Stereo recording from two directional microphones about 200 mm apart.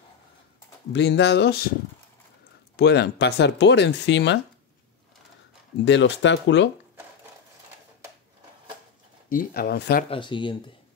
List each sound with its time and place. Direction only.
0.9 s speech: 60° left (ahead or behind)
2.7 s speech: 55° left (ahead or behind)
5.9 s speech: 65° left (ahead or behind)
9.3 s speech: 45° left (ahead or behind)
10.0 s speech: 25° left (ahead or behind)